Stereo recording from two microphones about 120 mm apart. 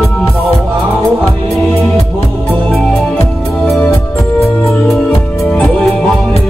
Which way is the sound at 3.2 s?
20° left (ahead or behind).